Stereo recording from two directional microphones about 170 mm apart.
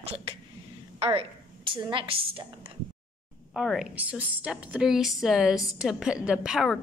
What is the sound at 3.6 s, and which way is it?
A woman's voice, 5° right (ahead or behind).